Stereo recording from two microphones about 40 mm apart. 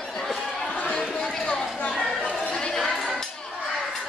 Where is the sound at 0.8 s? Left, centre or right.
Left.